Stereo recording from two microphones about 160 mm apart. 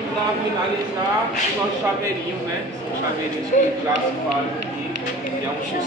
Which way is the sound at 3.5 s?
50° left (ahead or behind).